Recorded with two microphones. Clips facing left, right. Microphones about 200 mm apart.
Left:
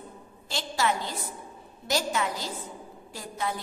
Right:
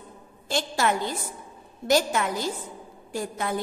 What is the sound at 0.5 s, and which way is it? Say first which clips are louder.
A woman's voice: right 3 dB; 50° right (ahead or behind).